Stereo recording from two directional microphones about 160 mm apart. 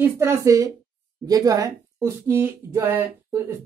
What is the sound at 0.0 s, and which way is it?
Speech, 15° right (ahead or behind).